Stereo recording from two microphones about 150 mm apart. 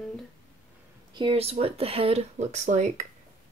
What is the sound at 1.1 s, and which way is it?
Speech, 40° right (ahead or behind).